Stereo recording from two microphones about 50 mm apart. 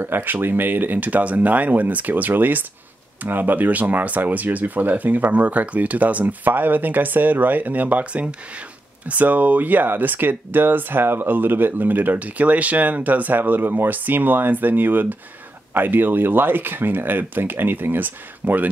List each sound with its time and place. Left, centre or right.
0.0 s speech: right